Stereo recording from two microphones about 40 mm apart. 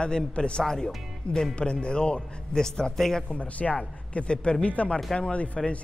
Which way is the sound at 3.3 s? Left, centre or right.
Left.